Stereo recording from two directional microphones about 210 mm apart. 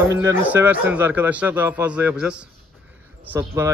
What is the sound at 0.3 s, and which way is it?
A man's voice, 10° right (ahead or behind).